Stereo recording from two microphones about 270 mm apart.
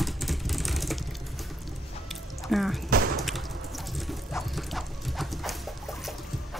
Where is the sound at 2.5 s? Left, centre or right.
Centre.